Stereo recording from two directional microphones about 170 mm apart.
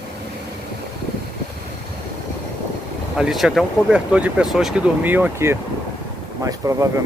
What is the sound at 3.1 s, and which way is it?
Speech, 5° right (ahead or behind).